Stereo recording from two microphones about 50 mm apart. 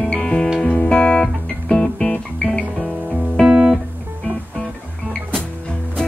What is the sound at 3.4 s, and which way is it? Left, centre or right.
Music, centre.